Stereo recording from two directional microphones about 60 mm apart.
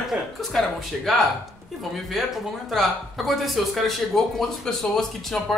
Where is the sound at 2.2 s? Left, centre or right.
Centre.